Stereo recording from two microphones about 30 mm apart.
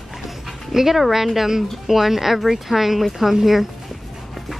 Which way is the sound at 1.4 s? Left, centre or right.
Centre.